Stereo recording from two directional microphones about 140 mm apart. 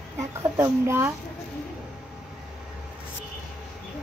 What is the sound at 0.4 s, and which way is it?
Speech, 20° right (ahead or behind).